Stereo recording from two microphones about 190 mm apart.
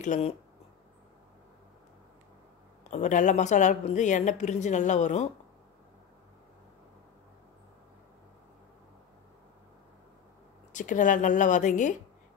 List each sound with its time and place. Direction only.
0.0 s a woman's voice: 35° left (ahead or behind)
2.9 s a woman's voice: 40° left (ahead or behind)
10.7 s a woman's voice: 40° left (ahead or behind)